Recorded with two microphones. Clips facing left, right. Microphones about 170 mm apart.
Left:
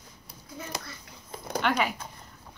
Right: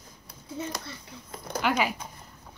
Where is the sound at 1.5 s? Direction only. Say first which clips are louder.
Even; 5° right (ahead or behind).